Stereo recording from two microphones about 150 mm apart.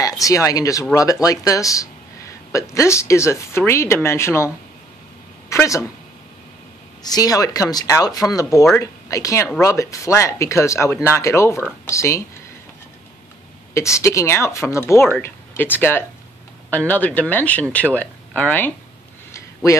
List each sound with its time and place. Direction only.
0.0 s speech: 20° left (ahead or behind)
5.5 s a woman's voice: 20° left (ahead or behind)
7.0 s speech: 25° left (ahead or behind)
13.7 s speech: 20° left (ahead or behind)
19.3 s a sound: 20° left (ahead or behind)